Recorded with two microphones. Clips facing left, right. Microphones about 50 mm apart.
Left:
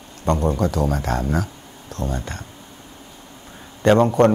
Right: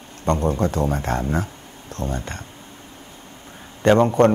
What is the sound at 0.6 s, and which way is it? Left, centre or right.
Speech, right.